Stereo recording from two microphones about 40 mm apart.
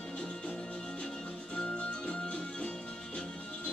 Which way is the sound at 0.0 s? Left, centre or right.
Left.